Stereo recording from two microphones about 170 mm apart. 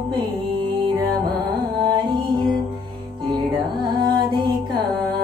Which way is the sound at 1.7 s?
25° right (ahead or behind).